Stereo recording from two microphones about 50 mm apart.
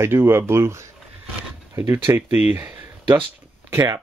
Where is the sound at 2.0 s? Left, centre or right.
Right.